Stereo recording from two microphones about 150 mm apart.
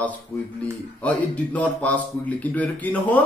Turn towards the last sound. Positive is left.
turn(degrees=10)  # may be behind; listen again after turning